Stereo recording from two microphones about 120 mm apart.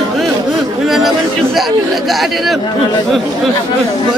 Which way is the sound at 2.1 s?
Centre (ahead or behind).